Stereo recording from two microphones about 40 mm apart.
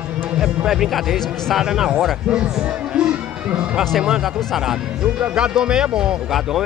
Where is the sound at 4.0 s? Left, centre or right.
Centre.